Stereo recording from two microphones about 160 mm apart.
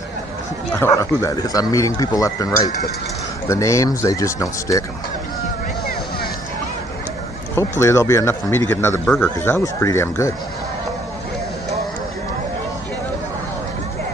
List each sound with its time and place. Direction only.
0.7 s speech: 15° left (ahead or behind)
7.5 s speech: 15° left (ahead or behind)